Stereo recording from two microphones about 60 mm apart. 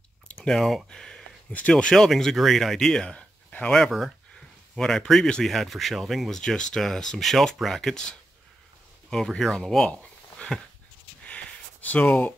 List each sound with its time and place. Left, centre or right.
0.5 s speech: centre
3.8 s speech: centre
9.1 s speech: centre
11.2 s a sound: left